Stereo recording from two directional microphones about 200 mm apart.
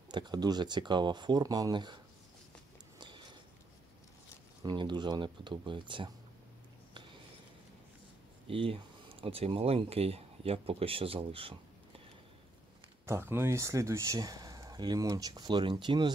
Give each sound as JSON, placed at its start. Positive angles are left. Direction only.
{"t": 0.1, "sound": "speech", "side_deg": -20}
{"t": 4.6, "sound": "speech", "side_deg": -20}
{"t": 8.5, "sound": "speech", "side_deg": -25}
{"t": 13.0, "sound": "speech", "side_deg": -10}